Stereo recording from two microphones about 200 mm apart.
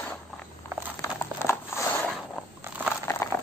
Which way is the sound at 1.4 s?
15° left (ahead or behind).